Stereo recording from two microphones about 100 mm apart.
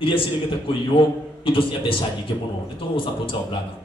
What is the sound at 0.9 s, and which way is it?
A man's voice, 60° left (ahead or behind).